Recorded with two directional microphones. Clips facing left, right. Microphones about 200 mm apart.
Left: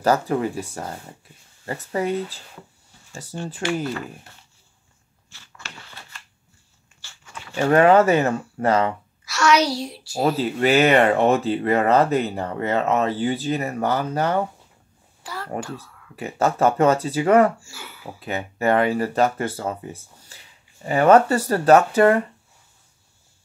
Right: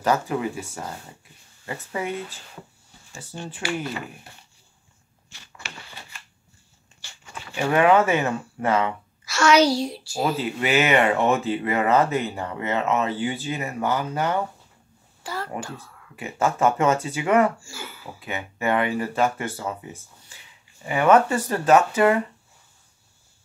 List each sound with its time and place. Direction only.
0.0 s speech: 40° left (ahead or behind)
5.3 s scissors: 15° right (ahead or behind)
7.0 s walk: 15° right (ahead or behind)
7.6 s speech: 40° left (ahead or behind)
9.2 s a child's voice: centre (ahead or behind)
10.6 s speech: 35° left (ahead or behind)
15.2 s a sound: centre (ahead or behind)
16.2 s speech: 35° left (ahead or behind)
17.6 s speech: centre (ahead or behind)
18.2 s speech: 40° left (ahead or behind)